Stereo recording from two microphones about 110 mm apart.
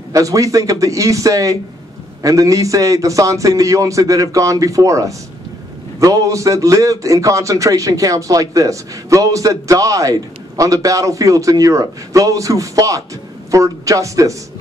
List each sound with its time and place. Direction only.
0.1 s a man's voice: 30° right (ahead or behind)